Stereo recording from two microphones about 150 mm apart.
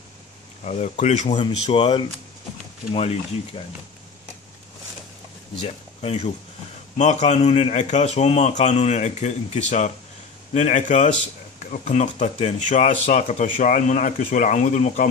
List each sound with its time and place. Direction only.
0.7 s speech: 50° left (ahead or behind)
1.4 s speech: 35° left (ahead or behind)
5.6 s speech: 40° left (ahead or behind)